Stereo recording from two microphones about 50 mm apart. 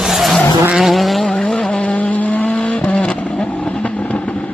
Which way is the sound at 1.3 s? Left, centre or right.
Centre.